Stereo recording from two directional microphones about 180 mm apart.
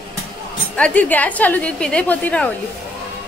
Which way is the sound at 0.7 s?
5° left (ahead or behind).